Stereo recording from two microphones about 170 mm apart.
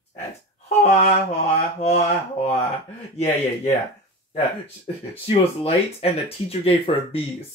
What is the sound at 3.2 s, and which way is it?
Speech, 40° left (ahead or behind).